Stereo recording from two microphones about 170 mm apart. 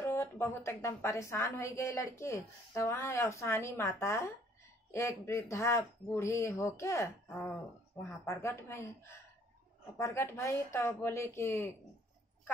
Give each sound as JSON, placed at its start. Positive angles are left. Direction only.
{"t": 0.0, "sound": "a woman's voice", "side_deg": 15}